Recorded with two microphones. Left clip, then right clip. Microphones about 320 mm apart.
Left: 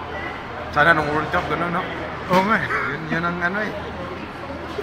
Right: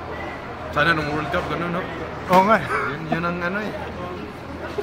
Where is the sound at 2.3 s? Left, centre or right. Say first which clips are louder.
Right 3 dB; centre.